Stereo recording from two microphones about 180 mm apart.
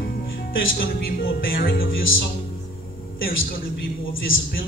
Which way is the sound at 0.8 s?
55° left (ahead or behind).